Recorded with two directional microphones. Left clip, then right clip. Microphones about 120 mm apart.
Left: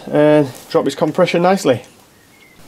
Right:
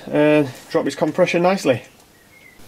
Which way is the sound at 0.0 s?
20° left (ahead or behind).